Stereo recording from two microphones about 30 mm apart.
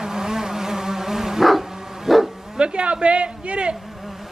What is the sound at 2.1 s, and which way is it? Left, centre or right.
Bow-wow, centre.